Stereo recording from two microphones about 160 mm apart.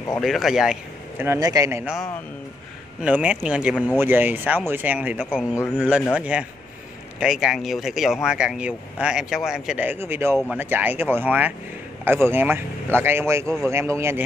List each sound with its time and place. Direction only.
0.2 s speech: centre (ahead or behind)
1.2 s a man's voice: 20° right (ahead or behind)
3.0 s a man's voice: 5° right (ahead or behind)
3.7 s speech: 5° left (ahead or behind)
4.0 s a man's voice: 10° right (ahead or behind)
5.4 s speech: 20° left (ahead or behind)
5.8 s a man's voice: 5° right (ahead or behind)
10.3 s speech: centre (ahead or behind)
10.6 s a man's voice: 10° right (ahead or behind)